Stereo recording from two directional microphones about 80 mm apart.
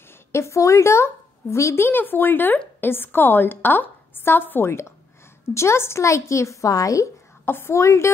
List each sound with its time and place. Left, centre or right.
0.3 s a woman's voice: left
7.4 s a woman's voice: left